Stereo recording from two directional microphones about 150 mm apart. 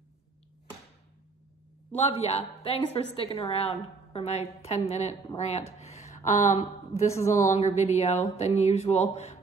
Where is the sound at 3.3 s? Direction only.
40° left (ahead or behind).